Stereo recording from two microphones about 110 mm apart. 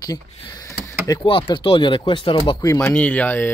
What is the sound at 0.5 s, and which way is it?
Speech, 30° left (ahead or behind).